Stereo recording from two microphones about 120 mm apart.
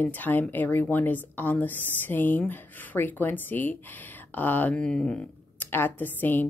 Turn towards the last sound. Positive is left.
turn(degrees=15)  # may be behind; listen again after turning